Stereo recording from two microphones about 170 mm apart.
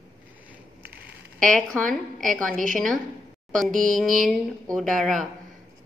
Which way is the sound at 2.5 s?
50° right (ahead or behind).